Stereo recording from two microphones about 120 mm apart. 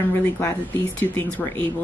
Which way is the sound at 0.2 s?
20° left (ahead or behind).